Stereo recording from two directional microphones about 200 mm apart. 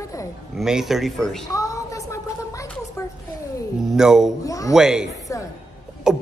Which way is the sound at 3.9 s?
5° right (ahead or behind).